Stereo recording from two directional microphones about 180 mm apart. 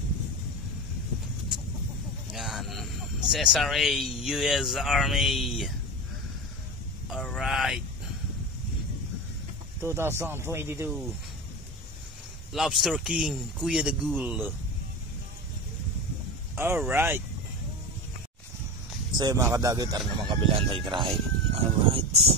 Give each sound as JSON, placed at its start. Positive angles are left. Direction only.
{"t": 2.3, "sound": "speech", "side_deg": 0}
{"t": 7.1, "sound": "speech", "side_deg": 0}
{"t": 9.8, "sound": "speech", "side_deg": -15}
{"t": 12.5, "sound": "speech", "side_deg": 0}
{"t": 16.5, "sound": "speech", "side_deg": -10}
{"t": 19.1, "sound": "speech", "side_deg": -20}